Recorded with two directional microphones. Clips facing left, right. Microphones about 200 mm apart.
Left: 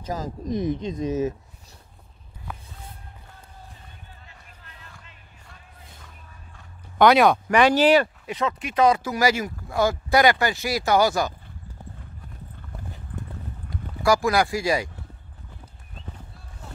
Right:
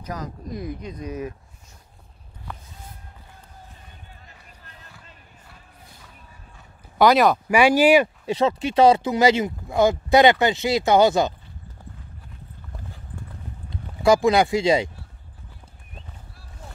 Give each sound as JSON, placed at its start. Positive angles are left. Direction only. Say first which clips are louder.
{"t": 0.0, "sound": "speech", "louder": "left 3 dB", "side_deg": 25}
{"t": 7.0, "sound": "speech", "louder": "even", "side_deg": 0}
{"t": 8.3, "sound": "speech", "louder": "right 6 dB", "side_deg": -30}
{"t": 13.7, "sound": "speech", "louder": "right 3 dB", "side_deg": -20}